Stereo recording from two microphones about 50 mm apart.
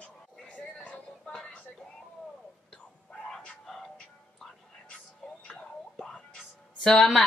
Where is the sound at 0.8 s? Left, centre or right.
Left.